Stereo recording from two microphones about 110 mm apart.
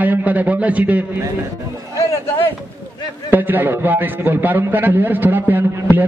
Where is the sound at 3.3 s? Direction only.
15° right (ahead or behind).